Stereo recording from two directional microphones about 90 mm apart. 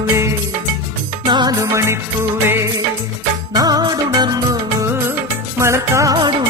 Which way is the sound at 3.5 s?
45° right (ahead or behind).